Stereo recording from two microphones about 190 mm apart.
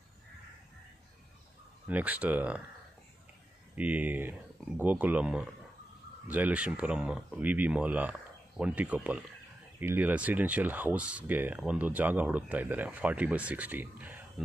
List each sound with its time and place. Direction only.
1.9 s speech: 10° right (ahead or behind)
3.7 s speech: 10° right (ahead or behind)